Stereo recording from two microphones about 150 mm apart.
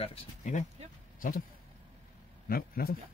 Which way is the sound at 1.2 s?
70° left (ahead or behind).